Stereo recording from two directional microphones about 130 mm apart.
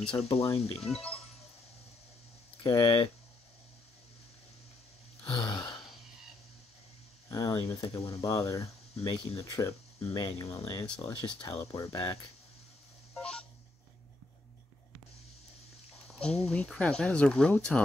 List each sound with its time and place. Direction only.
0.0 s speech: 5° left (ahead or behind)
0.3 s speech: 50° left (ahead or behind)
0.7 s speech: 5° left (ahead or behind)
2.7 s speech: 25° left (ahead or behind)
5.2 s gasp: 35° left (ahead or behind)
7.2 s speech: 25° left (ahead or behind)
7.8 s speech: 50° left (ahead or behind)
8.2 s speech: 25° left (ahead or behind)
13.1 s telephone dialing: 5° left (ahead or behind)
16.1 s a sound: 5° left (ahead or behind)
16.4 s speech: 5° left (ahead or behind)